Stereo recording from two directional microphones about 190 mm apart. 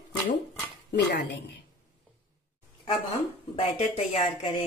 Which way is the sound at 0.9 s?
65° left (ahead or behind).